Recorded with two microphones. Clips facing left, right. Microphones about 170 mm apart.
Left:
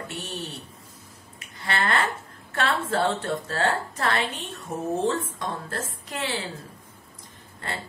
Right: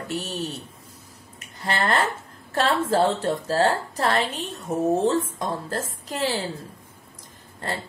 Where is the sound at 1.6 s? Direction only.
40° right (ahead or behind).